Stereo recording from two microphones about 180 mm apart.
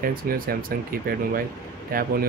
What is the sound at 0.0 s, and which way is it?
Speech, 55° right (ahead or behind).